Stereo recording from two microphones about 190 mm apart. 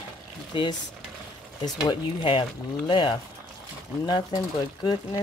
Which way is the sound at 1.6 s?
20° left (ahead or behind).